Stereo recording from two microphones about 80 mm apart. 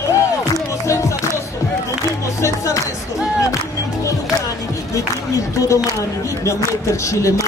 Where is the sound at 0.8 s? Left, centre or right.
Left.